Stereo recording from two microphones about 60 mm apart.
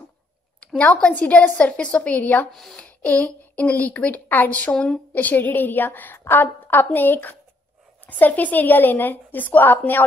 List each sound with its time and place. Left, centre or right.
1.1 s a woman's voice: left
2.5 s speech: centre
2.8 s a woman's voice: left
4.7 s speech: centre
5.1 s a woman's voice: left